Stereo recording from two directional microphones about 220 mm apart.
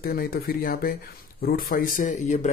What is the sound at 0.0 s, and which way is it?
Speech, 40° left (ahead or behind).